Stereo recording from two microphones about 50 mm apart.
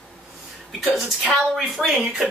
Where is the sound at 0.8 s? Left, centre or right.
Centre.